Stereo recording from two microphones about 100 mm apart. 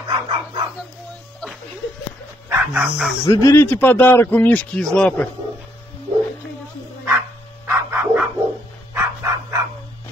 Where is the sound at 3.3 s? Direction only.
30° left (ahead or behind).